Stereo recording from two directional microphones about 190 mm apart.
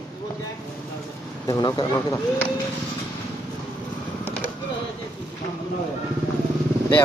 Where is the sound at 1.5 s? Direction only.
20° left (ahead or behind).